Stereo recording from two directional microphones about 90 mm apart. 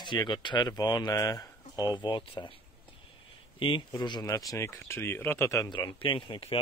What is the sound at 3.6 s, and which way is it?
Speech, 65° left (ahead or behind).